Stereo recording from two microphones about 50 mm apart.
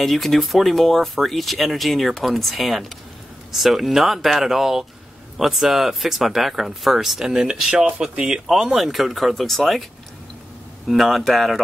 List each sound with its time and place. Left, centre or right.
0.0 s speech: centre
10.9 s speech: centre